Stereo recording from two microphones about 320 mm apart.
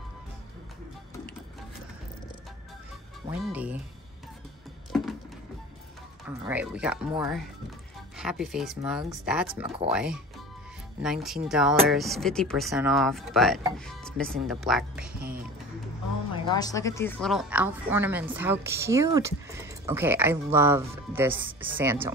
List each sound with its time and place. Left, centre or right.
3.3 s a woman's voice: centre
4.9 s a sound: centre
6.2 s a woman's voice: centre
15.1 s music: right
16.4 s a woman's voice: centre